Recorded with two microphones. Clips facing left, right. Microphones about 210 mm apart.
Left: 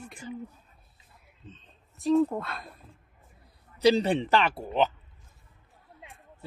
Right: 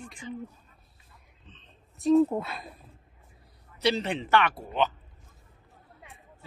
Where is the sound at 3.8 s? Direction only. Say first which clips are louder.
Left 5 dB; 35° left (ahead or behind).